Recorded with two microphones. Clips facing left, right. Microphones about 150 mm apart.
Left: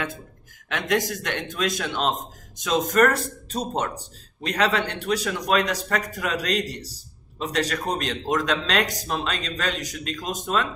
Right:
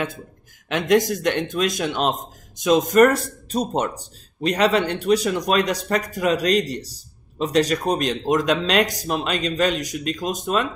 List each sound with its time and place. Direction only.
0.7 s a man's voice: 20° right (ahead or behind)